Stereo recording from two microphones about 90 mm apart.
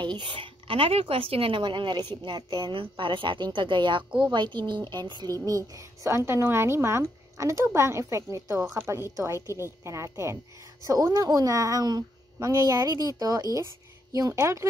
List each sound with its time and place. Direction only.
0.0 s a woman's voice: 60° right (ahead or behind)
2.7 s a woman's voice: 70° right (ahead or behind); by 5.3 s 55° right (ahead or behind)
5.4 s a woman's voice: 40° right (ahead or behind)
14.3 s a woman's voice: 30° right (ahead or behind)